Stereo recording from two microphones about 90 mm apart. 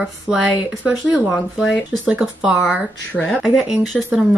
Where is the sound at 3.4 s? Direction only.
5° right (ahead or behind).